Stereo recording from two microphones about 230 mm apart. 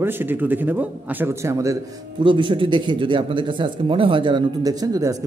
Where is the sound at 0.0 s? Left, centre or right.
Centre.